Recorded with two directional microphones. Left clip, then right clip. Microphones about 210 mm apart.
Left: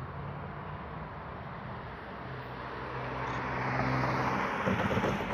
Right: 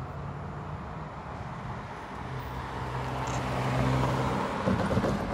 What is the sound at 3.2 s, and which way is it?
Vehicle, 50° right (ahead or behind).